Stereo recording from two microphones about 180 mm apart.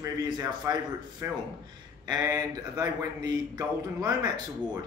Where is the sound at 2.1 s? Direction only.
20° right (ahead or behind).